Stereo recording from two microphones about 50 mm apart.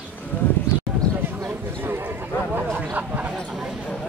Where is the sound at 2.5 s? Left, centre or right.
Right.